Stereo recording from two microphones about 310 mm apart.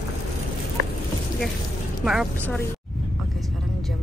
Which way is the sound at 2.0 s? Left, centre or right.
Centre.